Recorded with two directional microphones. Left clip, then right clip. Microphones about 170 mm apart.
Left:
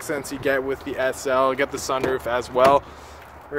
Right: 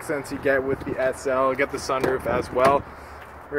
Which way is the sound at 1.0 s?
20° left (ahead or behind).